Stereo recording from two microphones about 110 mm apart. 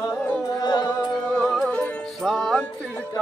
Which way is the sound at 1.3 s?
5° left (ahead or behind).